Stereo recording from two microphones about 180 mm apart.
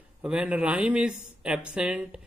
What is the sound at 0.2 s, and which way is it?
Speech, 5° right (ahead or behind).